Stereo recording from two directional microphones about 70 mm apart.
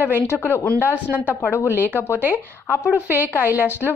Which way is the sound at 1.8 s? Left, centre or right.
Left.